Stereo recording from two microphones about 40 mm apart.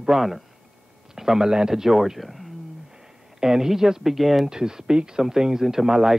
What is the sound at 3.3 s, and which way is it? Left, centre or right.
Speech, centre.